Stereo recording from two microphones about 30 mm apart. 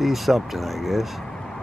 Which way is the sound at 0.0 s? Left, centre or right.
Centre.